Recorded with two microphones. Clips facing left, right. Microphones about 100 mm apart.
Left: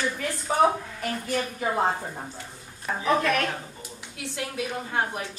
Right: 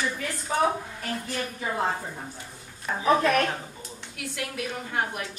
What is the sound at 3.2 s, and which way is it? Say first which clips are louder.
Speech: right 2 dB; 35° right (ahead or behind).